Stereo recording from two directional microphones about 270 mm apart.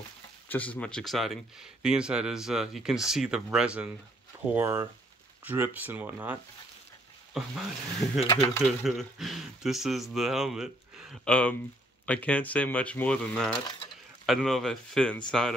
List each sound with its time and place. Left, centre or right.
0.5 s speech: centre
7.3 s speech: centre
8.0 s speech: left
8.4 s speech: centre